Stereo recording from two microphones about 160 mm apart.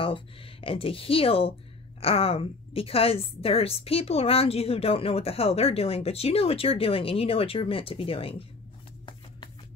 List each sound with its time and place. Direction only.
0.0 s a woman's voice: 35° left (ahead or behind)